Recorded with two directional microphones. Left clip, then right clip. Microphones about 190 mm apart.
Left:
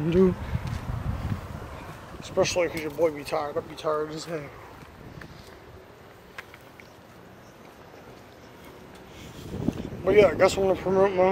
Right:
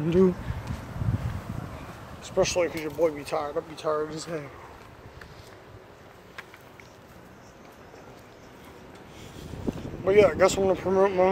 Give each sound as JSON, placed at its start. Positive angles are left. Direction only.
{"t": 0.0, "sound": "speech", "side_deg": -5}
{"t": 2.2, "sound": "speech", "side_deg": -10}
{"t": 9.4, "sound": "speech", "side_deg": 0}